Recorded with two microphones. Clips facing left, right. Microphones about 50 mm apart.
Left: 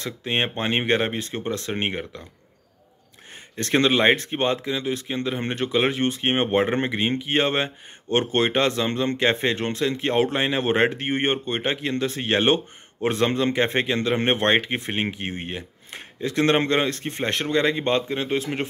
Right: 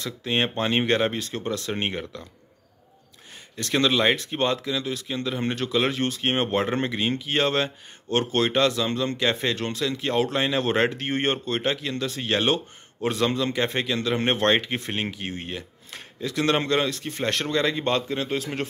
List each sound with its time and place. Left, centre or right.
0.0 s speech: left
3.5 s speech: left